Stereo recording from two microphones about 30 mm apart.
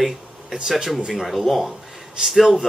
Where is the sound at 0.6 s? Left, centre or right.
Right.